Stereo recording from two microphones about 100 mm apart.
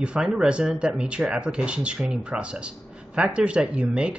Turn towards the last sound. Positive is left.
turn(degrees=-10)  # may be behind; listen again after turning